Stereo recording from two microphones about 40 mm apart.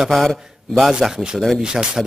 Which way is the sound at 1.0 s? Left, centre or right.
Centre.